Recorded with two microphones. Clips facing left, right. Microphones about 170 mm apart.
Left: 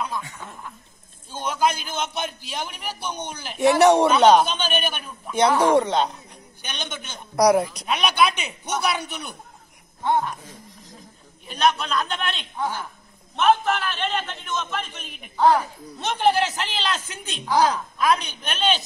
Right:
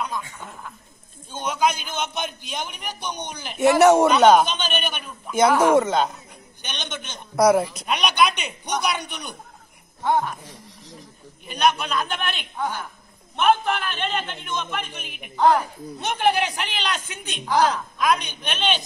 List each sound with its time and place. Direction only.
1.4 s a man's voice: centre (ahead or behind)
11.4 s a man's voice: centre (ahead or behind)
13.4 s a man's voice: centre (ahead or behind)